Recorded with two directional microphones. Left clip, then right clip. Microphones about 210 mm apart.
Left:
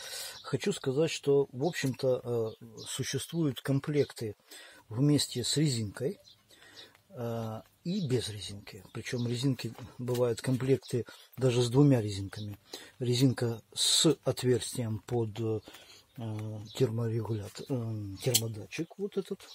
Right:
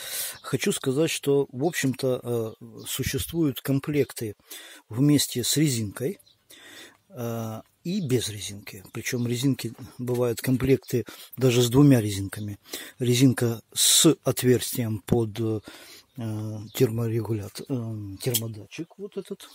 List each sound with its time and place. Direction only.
0.0 s speech: 55° right (ahead or behind)
7.2 s speech: 55° right (ahead or behind)
19.0 s speech: 25° right (ahead or behind)